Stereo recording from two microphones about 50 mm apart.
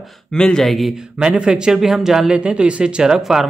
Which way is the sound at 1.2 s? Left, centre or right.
Centre.